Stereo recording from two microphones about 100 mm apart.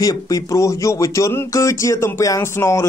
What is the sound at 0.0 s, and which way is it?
Speech, 40° left (ahead or behind).